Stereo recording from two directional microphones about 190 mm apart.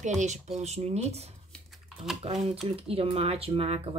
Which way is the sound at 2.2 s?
35° right (ahead or behind).